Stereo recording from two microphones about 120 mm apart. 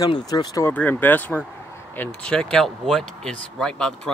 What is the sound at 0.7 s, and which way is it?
Speech, 15° left (ahead or behind).